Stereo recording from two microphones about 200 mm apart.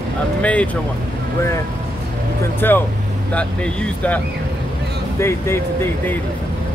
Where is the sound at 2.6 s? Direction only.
10° left (ahead or behind).